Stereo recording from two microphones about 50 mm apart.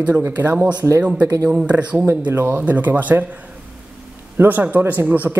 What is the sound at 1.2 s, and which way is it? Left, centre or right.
Speech, right.